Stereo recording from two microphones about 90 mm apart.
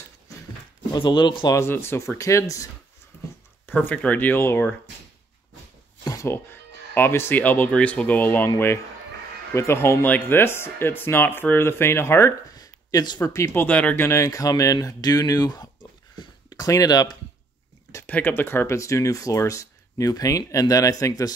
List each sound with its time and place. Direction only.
1.0 s speech: 60° left (ahead or behind)
1.5 s speech: 30° left (ahead or behind)
3.1 s a sound: 20° left (ahead or behind)
3.6 s speech: 20° left (ahead or behind)
6.2 s speech: 25° left (ahead or behind)
9.5 s speech: 30° left (ahead or behind)
12.5 s a sound: 45° left (ahead or behind)
13.3 s speech: 30° left (ahead or behind)
14.0 s speech: 35° left (ahead or behind)
16.2 s a sound: 50° left (ahead or behind)
18.0 s speech: 20° left (ahead or behind); by 21.3 s 45° left (ahead or behind)